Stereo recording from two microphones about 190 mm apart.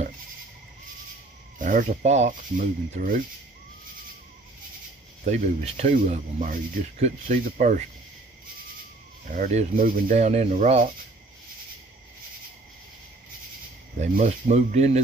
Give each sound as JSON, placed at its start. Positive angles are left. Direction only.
{"t": 1.6, "sound": "speech", "side_deg": -45}
{"t": 5.3, "sound": "speech", "side_deg": -35}
{"t": 9.2, "sound": "speech", "side_deg": -45}
{"t": 13.9, "sound": "speech", "side_deg": -40}